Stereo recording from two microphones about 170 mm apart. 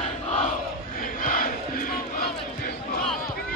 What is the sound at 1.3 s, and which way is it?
Crowd, 55° left (ahead or behind).